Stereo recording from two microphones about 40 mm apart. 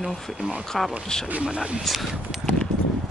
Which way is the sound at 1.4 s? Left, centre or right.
Right.